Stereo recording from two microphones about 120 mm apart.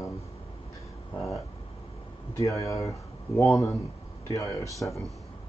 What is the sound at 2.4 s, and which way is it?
Speech, 25° left (ahead or behind).